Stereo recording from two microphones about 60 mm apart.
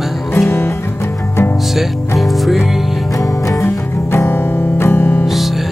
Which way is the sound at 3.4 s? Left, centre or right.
Left.